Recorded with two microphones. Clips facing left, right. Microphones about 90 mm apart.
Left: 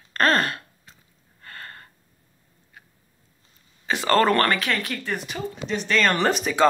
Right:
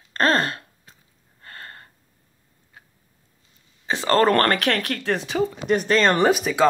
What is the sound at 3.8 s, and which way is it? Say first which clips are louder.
Speech: right 1 dB; 30° right (ahead or behind).